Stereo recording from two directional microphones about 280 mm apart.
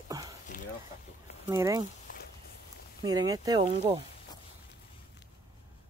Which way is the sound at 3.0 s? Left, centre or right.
Centre.